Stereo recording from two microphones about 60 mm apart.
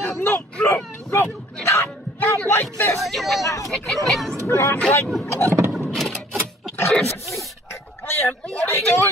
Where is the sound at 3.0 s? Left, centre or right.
Centre.